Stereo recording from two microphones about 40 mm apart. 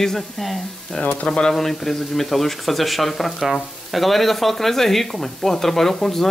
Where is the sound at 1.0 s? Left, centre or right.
Left.